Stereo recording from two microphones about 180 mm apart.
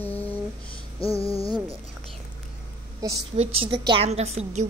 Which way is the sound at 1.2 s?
30° left (ahead or behind).